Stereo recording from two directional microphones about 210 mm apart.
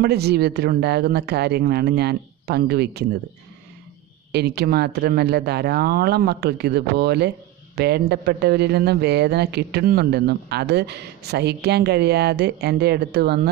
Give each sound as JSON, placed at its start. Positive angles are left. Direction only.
{"t": 0.0, "sound": "speech", "side_deg": -50}
{"t": 4.3, "sound": "speech", "side_deg": -50}